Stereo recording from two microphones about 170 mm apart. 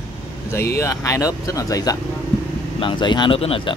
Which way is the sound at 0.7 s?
20° left (ahead or behind).